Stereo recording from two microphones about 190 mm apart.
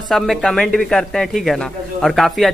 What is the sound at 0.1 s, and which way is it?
Speech, centre (ahead or behind).